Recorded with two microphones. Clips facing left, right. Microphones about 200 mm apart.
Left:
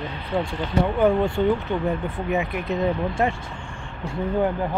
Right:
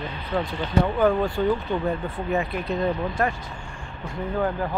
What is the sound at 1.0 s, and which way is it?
Speech, 25° left (ahead or behind).